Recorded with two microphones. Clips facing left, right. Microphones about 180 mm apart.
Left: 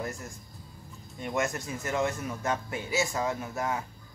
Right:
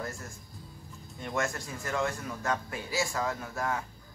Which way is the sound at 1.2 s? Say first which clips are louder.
Left 2 dB; 20° left (ahead or behind).